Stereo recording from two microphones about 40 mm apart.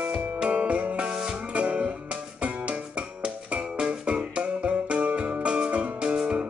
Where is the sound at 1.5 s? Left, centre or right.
Right.